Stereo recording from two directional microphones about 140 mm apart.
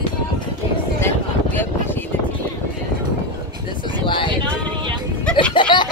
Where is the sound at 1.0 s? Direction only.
15° left (ahead or behind).